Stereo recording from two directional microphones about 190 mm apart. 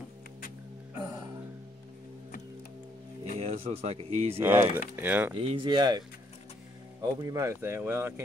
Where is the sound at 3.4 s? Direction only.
30° right (ahead or behind).